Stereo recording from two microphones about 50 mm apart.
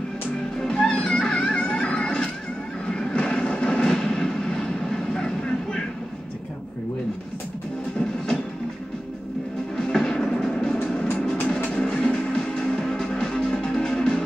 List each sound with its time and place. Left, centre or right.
0.7 s music: centre
2.9 s vehicle: centre
9.8 s music: centre
11.3 s music: left